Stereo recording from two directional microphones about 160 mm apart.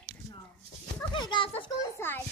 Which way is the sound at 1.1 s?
30° left (ahead or behind).